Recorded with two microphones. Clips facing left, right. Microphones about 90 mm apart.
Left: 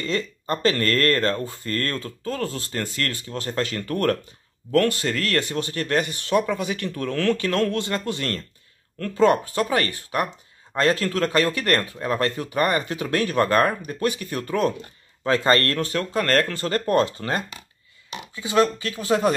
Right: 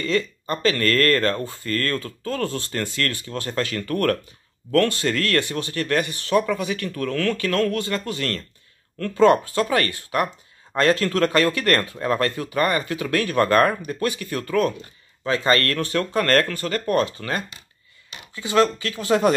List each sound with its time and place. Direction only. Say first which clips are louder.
0.5 s speech: even; 30° left (ahead or behind)
15.2 s speech: left 1 dB; 40° left (ahead or behind)
15.9 s speech: right 5 dB; 5° left (ahead or behind)
16.5 s speech: left 1 dB; 30° left (ahead or behind)
18.3 s speech: right 1 dB; 15° left (ahead or behind)